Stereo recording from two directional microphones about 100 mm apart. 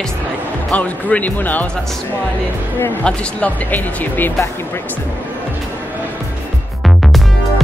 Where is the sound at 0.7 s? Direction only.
15° left (ahead or behind).